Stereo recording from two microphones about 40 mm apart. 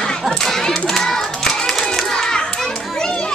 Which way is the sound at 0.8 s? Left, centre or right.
Centre.